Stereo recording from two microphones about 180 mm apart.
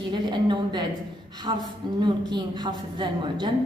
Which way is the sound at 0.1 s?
25° right (ahead or behind).